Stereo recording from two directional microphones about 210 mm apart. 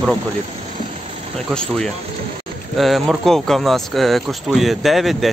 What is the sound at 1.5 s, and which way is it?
Speech, 5° left (ahead or behind).